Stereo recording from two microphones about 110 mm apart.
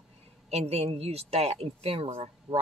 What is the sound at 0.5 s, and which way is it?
Speech, 70° right (ahead or behind).